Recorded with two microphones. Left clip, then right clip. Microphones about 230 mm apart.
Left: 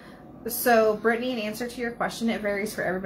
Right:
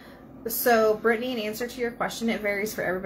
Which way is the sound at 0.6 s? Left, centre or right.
Centre.